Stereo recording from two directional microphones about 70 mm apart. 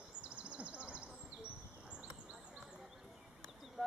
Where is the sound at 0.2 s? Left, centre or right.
Centre.